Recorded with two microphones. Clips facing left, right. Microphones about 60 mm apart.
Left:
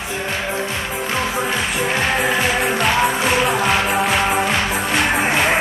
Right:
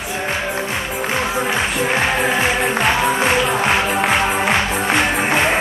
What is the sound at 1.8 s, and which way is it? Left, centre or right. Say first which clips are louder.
Music: even; right.